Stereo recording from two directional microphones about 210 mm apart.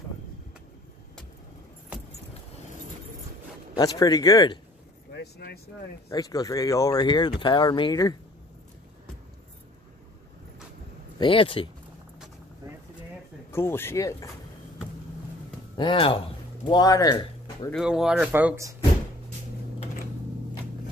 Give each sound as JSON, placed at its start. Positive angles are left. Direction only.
{"t": 3.7, "sound": "speech", "side_deg": 15}
{"t": 5.1, "sound": "vehicle", "side_deg": 50}
{"t": 6.0, "sound": "speech", "side_deg": 15}
{"t": 11.1, "sound": "speech", "side_deg": 25}
{"t": 13.5, "sound": "speech", "side_deg": 10}
{"t": 15.7, "sound": "speech", "side_deg": 25}
{"t": 17.6, "sound": "speech", "side_deg": 0}